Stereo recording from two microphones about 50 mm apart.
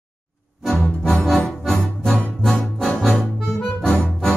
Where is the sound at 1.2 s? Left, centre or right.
Centre.